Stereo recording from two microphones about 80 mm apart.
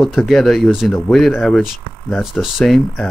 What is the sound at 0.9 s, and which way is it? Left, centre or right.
Speech, centre.